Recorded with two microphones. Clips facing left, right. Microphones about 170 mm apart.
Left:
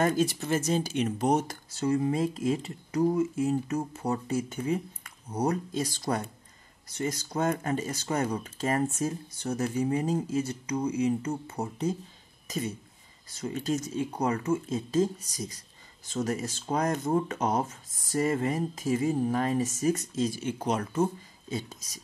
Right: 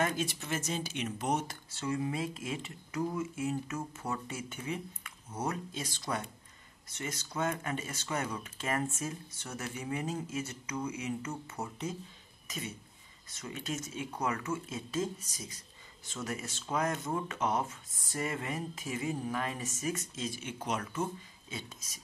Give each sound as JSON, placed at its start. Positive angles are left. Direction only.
{"t": 0.0, "sound": "speech", "side_deg": 40}